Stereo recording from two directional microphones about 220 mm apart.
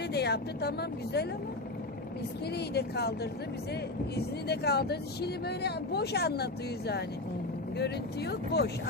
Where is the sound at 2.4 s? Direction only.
50° left (ahead or behind).